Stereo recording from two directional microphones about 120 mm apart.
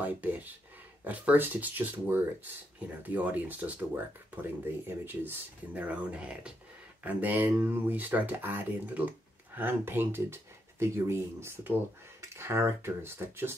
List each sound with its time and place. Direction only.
0.0 s speech: 15° right (ahead or behind)